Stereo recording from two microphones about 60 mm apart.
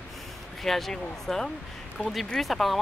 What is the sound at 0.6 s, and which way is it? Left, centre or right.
Speech, centre.